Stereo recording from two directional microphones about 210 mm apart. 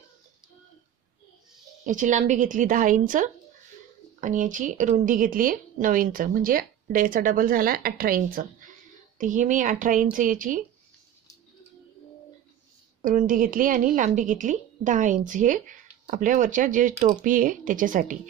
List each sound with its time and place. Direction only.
1.9 s speech: 35° right (ahead or behind)
13.0 s speech: 40° right (ahead or behind)